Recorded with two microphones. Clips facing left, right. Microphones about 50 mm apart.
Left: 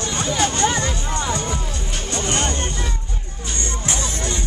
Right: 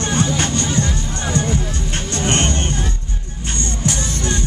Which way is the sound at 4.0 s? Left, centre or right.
Right.